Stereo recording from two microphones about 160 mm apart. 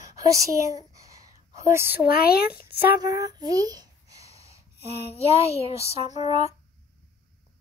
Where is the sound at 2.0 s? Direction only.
75° left (ahead or behind).